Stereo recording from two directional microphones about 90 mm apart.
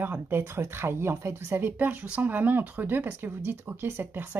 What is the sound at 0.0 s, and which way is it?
Speech, 25° right (ahead or behind).